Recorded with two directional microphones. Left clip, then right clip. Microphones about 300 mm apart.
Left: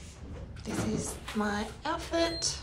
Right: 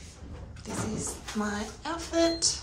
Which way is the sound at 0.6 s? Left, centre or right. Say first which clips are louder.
Left 1 dB; centre.